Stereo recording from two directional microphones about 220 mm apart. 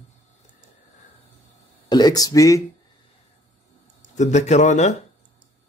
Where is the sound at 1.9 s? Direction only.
20° left (ahead or behind).